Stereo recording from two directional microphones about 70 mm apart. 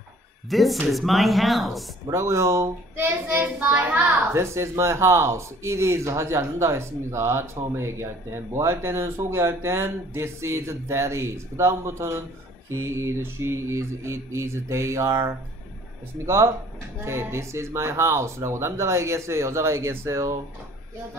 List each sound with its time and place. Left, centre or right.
0.5 s speech: centre
2.1 s speech: right
3.0 s a child's voice: right
4.3 s speech: right